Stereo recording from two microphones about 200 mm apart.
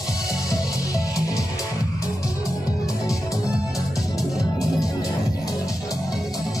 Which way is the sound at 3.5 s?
Centre (ahead or behind).